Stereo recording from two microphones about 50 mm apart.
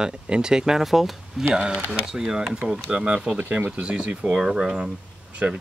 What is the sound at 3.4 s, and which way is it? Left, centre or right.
Speech, right.